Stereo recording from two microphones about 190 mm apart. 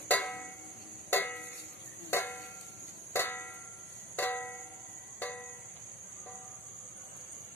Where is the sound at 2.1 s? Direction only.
10° left (ahead or behind).